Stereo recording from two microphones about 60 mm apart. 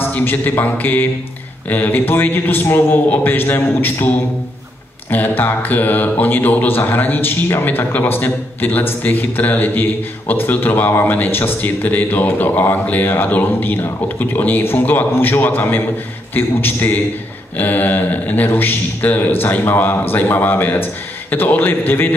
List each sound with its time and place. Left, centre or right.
0.0 s speech: left
5.1 s speech: left